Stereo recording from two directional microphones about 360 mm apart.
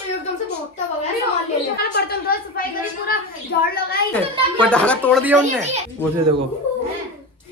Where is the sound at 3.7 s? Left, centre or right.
Left.